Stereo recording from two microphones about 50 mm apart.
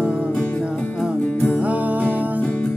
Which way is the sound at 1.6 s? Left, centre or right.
Right.